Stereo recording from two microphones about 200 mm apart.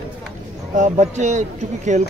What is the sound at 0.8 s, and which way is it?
Speech, 35° right (ahead or behind).